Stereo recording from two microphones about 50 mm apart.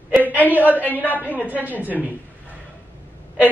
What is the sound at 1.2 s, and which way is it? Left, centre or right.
Speech, right.